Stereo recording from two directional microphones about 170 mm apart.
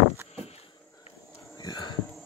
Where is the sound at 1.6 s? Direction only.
25° left (ahead or behind).